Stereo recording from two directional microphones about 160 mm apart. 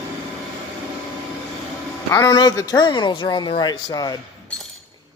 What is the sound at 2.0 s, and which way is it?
Speech, 20° left (ahead or behind).